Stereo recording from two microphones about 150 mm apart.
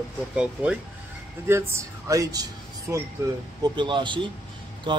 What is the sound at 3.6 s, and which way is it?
Speech, 30° right (ahead or behind).